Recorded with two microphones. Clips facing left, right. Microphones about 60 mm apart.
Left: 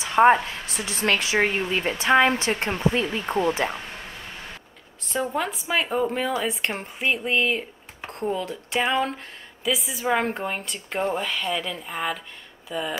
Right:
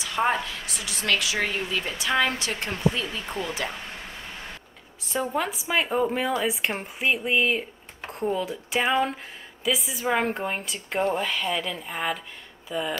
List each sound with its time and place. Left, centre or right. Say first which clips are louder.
0.0 s a woman's voice: left 8 dB; left
5.0 s speech: left 1 dB; centre